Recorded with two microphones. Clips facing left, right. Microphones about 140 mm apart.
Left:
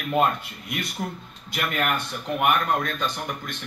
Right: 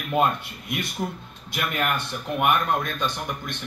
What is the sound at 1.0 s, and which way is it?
A man's voice, 5° right (ahead or behind).